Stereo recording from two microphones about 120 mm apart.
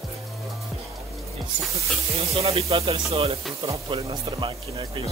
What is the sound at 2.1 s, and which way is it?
Speech, 55° right (ahead or behind).